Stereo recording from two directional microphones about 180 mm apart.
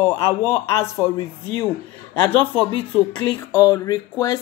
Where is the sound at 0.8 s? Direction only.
20° left (ahead or behind).